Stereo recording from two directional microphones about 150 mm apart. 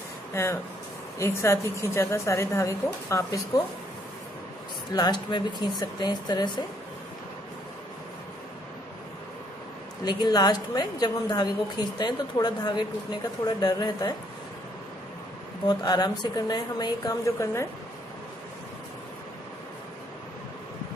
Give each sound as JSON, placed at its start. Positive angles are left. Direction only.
{"t": 0.3, "sound": "a woman's voice", "side_deg": 15}
{"t": 4.9, "sound": "a woman's voice", "side_deg": 30}
{"t": 10.0, "sound": "a woman's voice", "side_deg": 30}
{"t": 15.8, "sound": "a woman's voice", "side_deg": 30}